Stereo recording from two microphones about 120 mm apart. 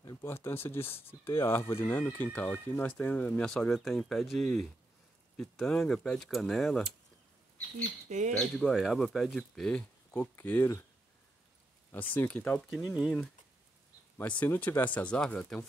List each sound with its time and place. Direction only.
0.2 s speech: 20° left (ahead or behind)
2.1 s speech: 15° left (ahead or behind)
8.1 s speech: 90° right
8.4 s speech: centre (ahead or behind)
11.9 s speech: 15° left (ahead or behind)
12.6 s speech: centre (ahead or behind)
14.4 s speech: 15° left (ahead or behind)